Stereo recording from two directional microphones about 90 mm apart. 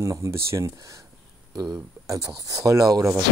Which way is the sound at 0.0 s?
35° right (ahead or behind).